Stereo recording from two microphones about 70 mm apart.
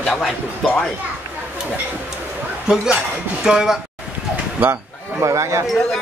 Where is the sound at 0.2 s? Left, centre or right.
Centre.